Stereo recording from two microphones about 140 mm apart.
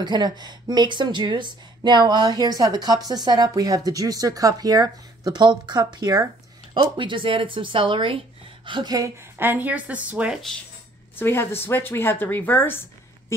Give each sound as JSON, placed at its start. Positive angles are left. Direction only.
{"t": 0.0, "sound": "a woman's voice", "side_deg": -30}
{"t": 11.1, "sound": "speech", "side_deg": 15}